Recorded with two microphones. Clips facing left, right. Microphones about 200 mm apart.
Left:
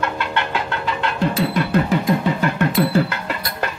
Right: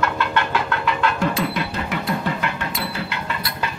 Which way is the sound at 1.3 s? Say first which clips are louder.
Left 6 dB; 45° left (ahead or behind).